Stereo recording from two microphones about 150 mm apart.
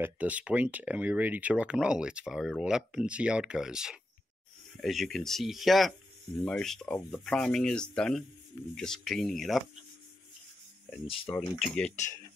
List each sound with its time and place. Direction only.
0.0 s speech: 10° right (ahead or behind)
11.3 s speech: 15° left (ahead or behind)